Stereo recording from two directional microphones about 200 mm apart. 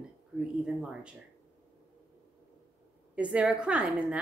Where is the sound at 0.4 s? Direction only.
5° right (ahead or behind).